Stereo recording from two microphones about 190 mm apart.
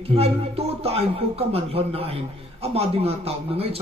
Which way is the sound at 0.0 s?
30° right (ahead or behind).